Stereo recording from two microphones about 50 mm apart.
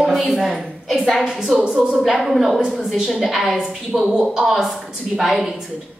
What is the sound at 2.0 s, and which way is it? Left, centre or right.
A woman's voice, centre.